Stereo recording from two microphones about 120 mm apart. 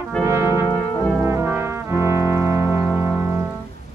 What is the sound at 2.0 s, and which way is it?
Music, 25° right (ahead or behind).